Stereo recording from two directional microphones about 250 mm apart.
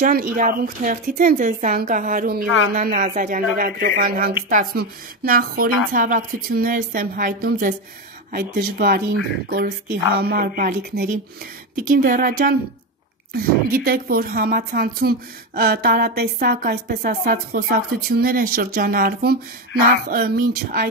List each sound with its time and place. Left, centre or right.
0.0 s a woman's voice: right